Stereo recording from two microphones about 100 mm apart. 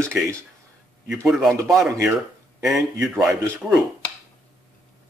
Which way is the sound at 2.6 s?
Centre (ahead or behind).